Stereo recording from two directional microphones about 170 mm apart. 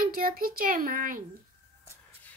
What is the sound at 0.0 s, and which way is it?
A child's voice, 55° right (ahead or behind).